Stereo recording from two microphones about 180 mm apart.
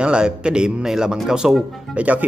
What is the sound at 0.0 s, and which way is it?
Speech, 5° right (ahead or behind).